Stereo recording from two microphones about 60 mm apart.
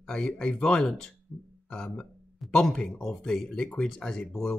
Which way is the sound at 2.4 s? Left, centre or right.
Centre.